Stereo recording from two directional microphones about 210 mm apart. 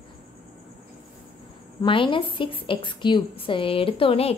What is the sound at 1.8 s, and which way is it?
A woman's voice, 25° left (ahead or behind).